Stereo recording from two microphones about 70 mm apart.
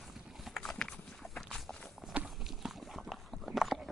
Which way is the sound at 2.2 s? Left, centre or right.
Centre.